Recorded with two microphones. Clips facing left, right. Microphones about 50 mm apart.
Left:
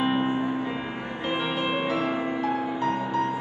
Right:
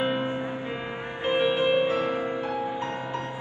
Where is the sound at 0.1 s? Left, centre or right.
Left.